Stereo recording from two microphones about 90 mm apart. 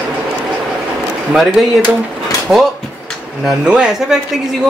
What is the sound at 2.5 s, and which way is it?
Speech, 15° right (ahead or behind).